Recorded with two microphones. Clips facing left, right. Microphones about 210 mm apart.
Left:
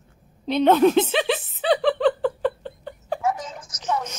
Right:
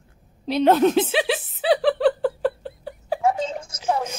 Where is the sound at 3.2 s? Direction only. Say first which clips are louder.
Right 6 dB; 30° right (ahead or behind).